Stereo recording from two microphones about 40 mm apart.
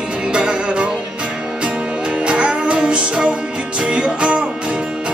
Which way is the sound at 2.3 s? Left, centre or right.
Right.